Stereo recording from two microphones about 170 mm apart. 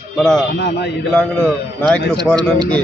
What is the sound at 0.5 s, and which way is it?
Speech, 75° left (ahead or behind).